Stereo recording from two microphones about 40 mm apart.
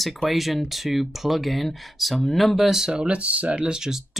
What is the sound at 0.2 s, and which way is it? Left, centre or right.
Speech, centre.